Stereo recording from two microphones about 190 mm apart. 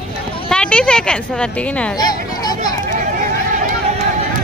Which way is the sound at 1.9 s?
20° left (ahead or behind).